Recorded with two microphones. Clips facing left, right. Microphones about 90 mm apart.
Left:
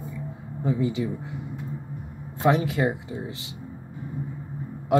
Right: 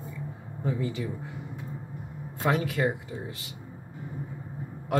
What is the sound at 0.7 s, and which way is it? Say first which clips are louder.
Speech: left 5 dB; 15° left (ahead or behind).